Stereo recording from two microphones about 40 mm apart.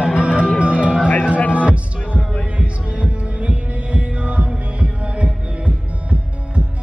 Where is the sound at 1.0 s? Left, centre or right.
Left.